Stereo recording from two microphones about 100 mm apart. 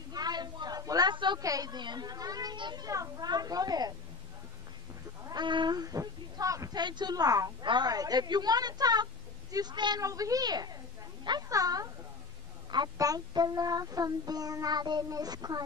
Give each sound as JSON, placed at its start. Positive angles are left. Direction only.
{"t": 0.1, "sound": "a sound", "side_deg": -45}
{"t": 1.1, "sound": "a sound", "side_deg": -50}
{"t": 1.4, "sound": "child singing", "side_deg": -35}
{"t": 5.2, "sound": "a woman's voice", "side_deg": -45}
{"t": 10.0, "sound": "child singing", "side_deg": -35}
{"t": 12.9, "sound": "child singing", "side_deg": -35}